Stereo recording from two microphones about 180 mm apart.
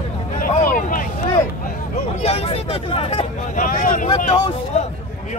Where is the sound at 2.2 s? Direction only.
35° left (ahead or behind).